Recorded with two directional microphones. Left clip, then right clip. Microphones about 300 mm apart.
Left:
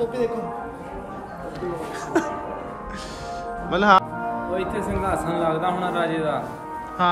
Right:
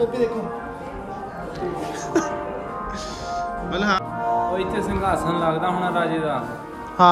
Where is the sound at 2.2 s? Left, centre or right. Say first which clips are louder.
Right 1 dB; centre.